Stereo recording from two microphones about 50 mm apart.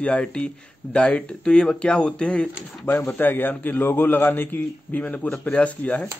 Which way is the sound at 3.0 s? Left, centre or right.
Left.